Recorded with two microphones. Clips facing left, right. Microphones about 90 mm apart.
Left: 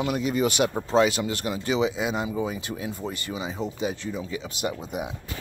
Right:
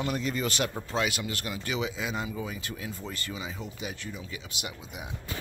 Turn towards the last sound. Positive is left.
turn(degrees=35)  # may be behind; listen again after turning